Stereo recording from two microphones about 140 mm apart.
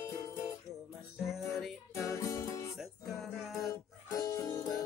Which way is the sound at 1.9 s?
20° left (ahead or behind).